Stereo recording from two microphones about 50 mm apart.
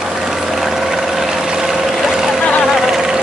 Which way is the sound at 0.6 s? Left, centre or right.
Centre.